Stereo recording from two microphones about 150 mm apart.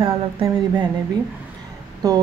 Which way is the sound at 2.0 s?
25° right (ahead or behind).